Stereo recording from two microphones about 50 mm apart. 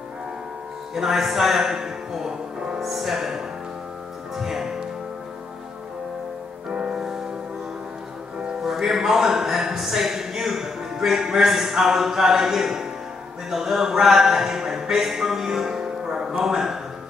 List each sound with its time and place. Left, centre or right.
0.9 s speech: centre
6.7 s music: centre
8.6 s a sound: centre
13.5 s speech: centre